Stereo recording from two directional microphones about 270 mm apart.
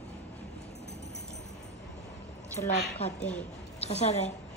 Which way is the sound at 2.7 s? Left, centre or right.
Left.